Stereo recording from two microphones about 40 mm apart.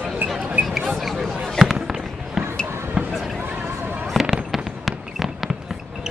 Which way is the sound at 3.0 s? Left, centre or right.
Centre.